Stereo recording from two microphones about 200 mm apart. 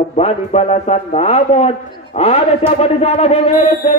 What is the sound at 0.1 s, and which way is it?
A man's voice, 30° left (ahead or behind).